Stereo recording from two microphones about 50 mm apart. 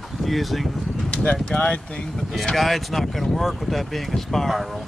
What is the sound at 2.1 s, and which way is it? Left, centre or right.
Speech, centre.